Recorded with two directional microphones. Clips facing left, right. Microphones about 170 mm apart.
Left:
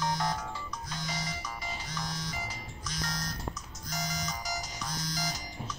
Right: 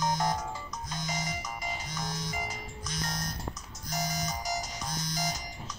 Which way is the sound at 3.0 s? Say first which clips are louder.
Even; 25° right (ahead or behind).